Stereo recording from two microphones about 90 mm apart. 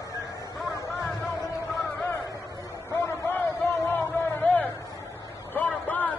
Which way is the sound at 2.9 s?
30° left (ahead or behind).